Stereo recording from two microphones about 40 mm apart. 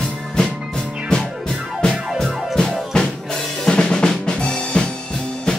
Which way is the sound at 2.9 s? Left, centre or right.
Centre.